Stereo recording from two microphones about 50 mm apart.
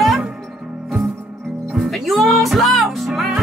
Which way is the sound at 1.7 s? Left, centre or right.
Centre.